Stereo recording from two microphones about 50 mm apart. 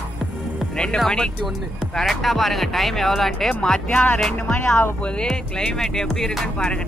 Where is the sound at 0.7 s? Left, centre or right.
Centre.